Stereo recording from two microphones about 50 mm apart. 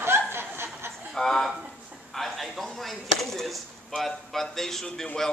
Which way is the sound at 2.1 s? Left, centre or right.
Centre.